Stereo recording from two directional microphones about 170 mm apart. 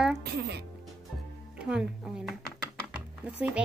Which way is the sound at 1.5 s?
5° right (ahead or behind).